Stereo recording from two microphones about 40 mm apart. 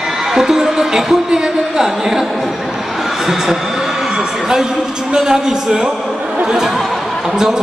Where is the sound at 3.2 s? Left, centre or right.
Centre.